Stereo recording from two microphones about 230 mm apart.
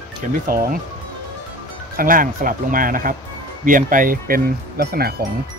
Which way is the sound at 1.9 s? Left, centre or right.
Right.